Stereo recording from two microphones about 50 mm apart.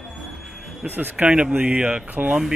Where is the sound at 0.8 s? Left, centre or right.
Right.